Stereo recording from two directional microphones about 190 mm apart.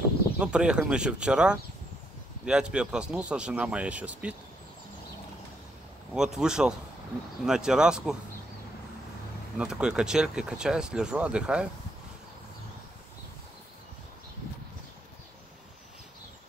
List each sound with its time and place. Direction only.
0.4 s speech: 5° right (ahead or behind)
6.1 s speech: 5° right (ahead or behind)
9.6 s speech: 5° right (ahead or behind)